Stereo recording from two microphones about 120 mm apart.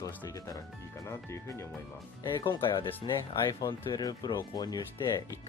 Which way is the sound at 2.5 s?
40° left (ahead or behind).